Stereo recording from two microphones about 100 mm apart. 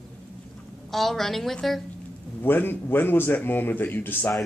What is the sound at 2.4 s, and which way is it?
A man's voice, 20° left (ahead or behind).